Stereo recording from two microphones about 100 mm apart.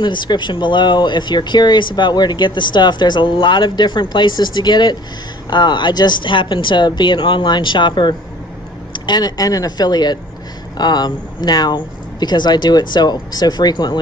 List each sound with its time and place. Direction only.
0.0 s speech: 50° left (ahead or behind)